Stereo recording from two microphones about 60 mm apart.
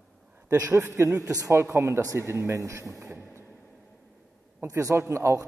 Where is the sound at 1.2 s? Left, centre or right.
Right.